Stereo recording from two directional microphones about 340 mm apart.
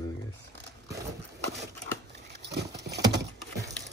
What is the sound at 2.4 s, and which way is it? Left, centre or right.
Horse, right.